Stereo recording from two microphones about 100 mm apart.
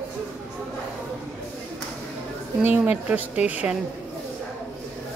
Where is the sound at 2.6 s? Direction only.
15° right (ahead or behind).